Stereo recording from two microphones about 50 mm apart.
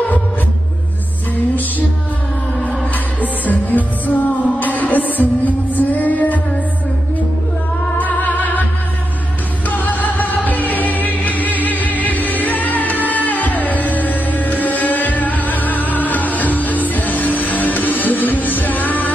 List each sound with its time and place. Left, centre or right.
3.2 s music: left
8.0 s music: left
9.7 s music: left